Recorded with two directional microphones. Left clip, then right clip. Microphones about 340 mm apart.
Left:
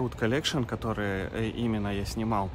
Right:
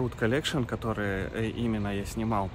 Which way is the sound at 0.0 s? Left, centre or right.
Centre.